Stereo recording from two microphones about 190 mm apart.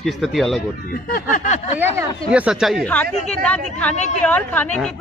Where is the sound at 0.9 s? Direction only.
45° left (ahead or behind).